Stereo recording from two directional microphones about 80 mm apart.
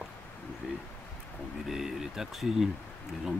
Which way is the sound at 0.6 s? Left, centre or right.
Centre.